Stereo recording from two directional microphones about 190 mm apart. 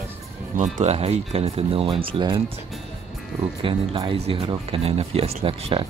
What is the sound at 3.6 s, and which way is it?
Speech, 25° right (ahead or behind).